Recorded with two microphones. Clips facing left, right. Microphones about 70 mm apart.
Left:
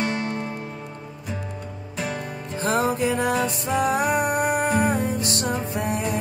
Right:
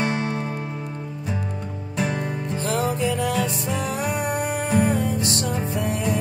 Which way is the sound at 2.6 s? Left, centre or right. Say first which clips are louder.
Left 2 dB; left.